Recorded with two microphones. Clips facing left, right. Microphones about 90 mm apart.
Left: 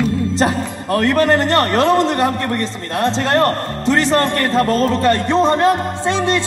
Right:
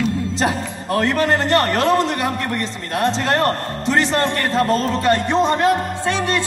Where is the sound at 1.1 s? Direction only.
40° left (ahead or behind).